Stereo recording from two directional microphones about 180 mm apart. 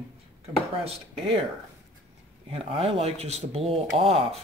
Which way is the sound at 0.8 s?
30° right (ahead or behind).